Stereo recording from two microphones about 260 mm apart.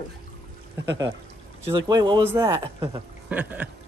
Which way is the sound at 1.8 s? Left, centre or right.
Centre.